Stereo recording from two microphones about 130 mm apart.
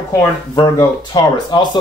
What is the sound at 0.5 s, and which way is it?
Speech, 30° left (ahead or behind).